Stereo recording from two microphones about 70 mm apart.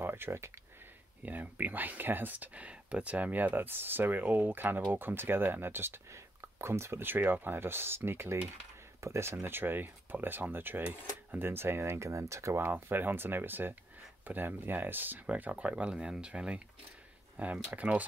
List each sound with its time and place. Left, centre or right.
0.0 s a sound: right
1.2 s speech: right
12.6 s speech: right